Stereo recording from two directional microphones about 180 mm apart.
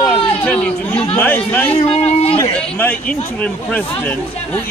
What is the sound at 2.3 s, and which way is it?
Speech, 10° left (ahead or behind).